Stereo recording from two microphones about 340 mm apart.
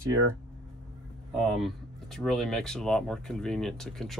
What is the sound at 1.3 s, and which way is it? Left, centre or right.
Speech, centre.